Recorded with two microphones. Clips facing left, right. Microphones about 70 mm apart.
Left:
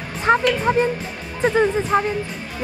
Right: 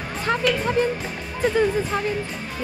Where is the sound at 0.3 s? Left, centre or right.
Left.